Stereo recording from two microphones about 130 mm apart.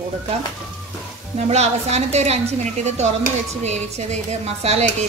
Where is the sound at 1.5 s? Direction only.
55° right (ahead or behind).